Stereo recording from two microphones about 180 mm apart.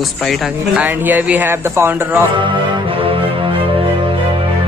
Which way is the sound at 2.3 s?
25° right (ahead or behind).